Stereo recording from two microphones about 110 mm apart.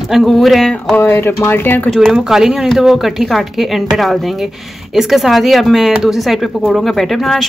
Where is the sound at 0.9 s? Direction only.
20° left (ahead or behind).